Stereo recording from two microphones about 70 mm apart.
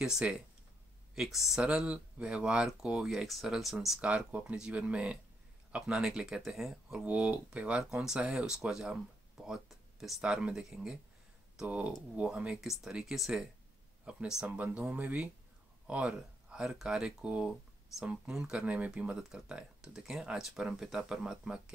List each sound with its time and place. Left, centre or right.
0.0 s speech: centre
1.6 s speech: centre
4.0 s speech: centre
7.1 s speech: centre
11.6 s speech: centre
12.4 s speech: centre